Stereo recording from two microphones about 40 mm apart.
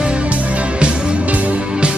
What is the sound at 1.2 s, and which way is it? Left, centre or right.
Music, right.